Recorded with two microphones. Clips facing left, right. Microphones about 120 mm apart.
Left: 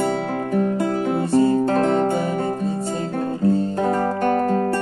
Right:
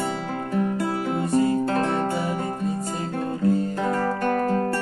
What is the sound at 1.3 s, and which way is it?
Music, 30° left (ahead or behind).